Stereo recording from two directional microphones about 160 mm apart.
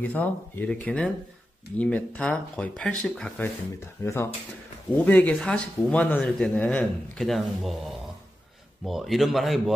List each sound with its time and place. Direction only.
0.0 s speech: 10° left (ahead or behind)
8.8 s a man's voice: centre (ahead or behind)